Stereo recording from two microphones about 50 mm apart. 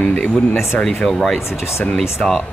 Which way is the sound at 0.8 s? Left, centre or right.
Centre.